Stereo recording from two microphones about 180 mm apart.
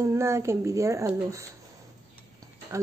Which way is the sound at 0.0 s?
15° right (ahead or behind).